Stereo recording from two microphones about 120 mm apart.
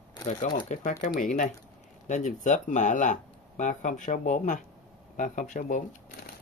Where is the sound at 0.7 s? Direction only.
90° left.